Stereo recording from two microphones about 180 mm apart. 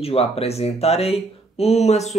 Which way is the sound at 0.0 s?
35° left (ahead or behind).